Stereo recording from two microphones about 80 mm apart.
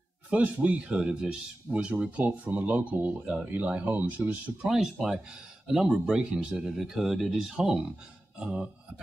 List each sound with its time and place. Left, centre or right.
0.3 s speech: centre
4.7 s speech: centre